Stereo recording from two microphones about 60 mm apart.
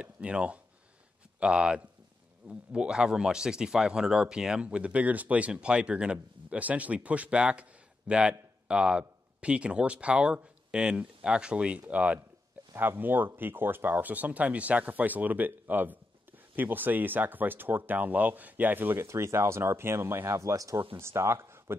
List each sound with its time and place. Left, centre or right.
0.0 s speech: centre
12.7 s speech: right
19.0 s speech: right
21.0 s speech: right